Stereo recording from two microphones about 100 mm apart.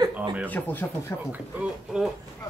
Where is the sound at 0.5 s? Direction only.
20° left (ahead or behind).